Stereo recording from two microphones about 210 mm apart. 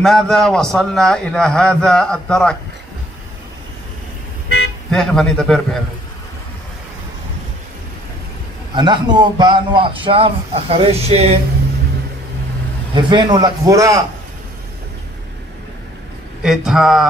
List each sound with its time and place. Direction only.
0.0 s a man's voice: centre (ahead or behind)
4.9 s a man's voice: 5° left (ahead or behind)
8.7 s a man's voice: 20° right (ahead or behind)
12.9 s a man's voice: 20° right (ahead or behind)
16.4 s a man's voice: centre (ahead or behind)